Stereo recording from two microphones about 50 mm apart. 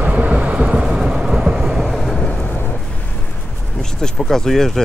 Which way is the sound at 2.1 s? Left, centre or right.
Centre.